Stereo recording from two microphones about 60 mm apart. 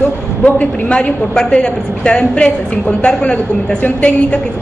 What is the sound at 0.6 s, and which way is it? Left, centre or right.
A woman's voice, centre.